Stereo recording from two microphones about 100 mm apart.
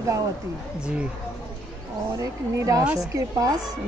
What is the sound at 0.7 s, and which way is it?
Speech, 10° right (ahead or behind).